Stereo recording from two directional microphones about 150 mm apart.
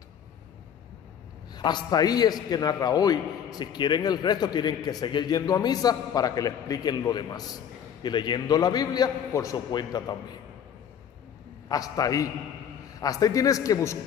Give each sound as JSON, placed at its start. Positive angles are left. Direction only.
{"t": 1.5, "sound": "a man's voice", "side_deg": 30}
{"t": 11.7, "sound": "a man's voice", "side_deg": 25}